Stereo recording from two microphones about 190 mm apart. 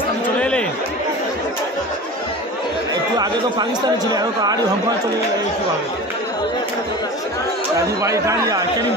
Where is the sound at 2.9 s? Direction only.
20° right (ahead or behind).